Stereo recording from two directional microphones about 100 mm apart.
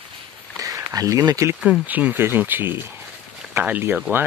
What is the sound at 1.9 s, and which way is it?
Speech, 15° right (ahead or behind).